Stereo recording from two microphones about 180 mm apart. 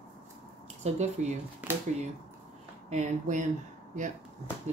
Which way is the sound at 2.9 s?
45° right (ahead or behind).